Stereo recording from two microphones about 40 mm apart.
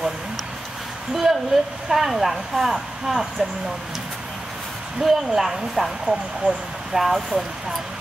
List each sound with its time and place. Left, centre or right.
1.1 s speech: centre
5.0 s speech: centre
6.4 s speech: right
6.9 s speech: centre